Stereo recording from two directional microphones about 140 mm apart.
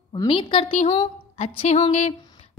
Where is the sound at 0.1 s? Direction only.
35° left (ahead or behind).